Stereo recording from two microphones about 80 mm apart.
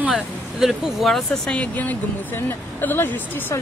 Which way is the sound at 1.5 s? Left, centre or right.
Centre.